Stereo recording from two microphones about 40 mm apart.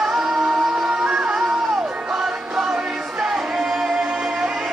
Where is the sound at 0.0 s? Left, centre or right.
Centre.